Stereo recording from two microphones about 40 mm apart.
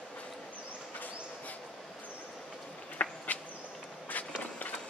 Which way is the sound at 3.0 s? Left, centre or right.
Left.